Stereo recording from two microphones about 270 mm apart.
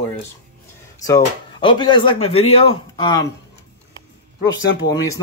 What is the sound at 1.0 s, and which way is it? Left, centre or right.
Speech, centre.